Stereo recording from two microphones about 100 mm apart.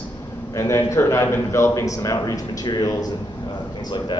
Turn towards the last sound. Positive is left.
turn(degrees=45)  # may be behind; listen again after turning